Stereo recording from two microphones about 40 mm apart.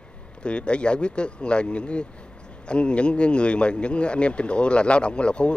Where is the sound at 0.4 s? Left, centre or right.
Left.